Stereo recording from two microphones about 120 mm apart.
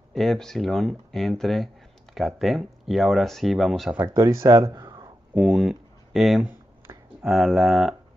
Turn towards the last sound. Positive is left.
turn(degrees=0)  # may be behind; listen again after turning